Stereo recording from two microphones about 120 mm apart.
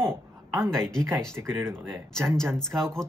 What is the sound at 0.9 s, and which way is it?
Speech, 25° right (ahead or behind).